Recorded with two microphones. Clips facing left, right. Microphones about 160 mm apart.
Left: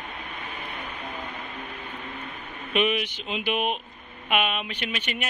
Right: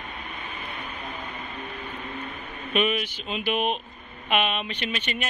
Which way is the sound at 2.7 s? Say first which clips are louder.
Even; 15° left (ahead or behind).